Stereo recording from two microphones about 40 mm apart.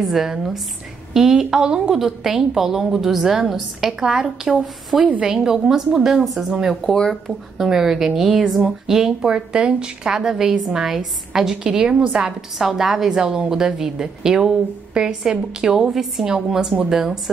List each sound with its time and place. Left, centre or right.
0.0 s a woman's voice: centre
6.8 s speech: centre
7.2 s a woman's voice: centre
8.8 s a woman's voice: centre
11.6 s a woman's voice: right
12.2 s a woman's voice: centre
13.2 s a woman's voice: right; by 16.3 s centre
16.5 s a woman's voice: centre